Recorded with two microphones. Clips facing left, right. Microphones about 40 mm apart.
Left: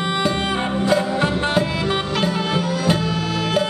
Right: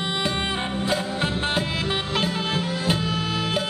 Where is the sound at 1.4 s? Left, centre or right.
Centre.